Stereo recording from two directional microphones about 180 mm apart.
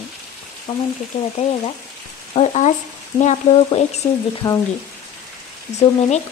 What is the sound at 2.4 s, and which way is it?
Speech, 40° left (ahead or behind).